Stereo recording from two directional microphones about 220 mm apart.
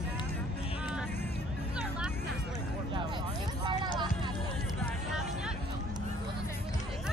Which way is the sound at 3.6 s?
20° right (ahead or behind).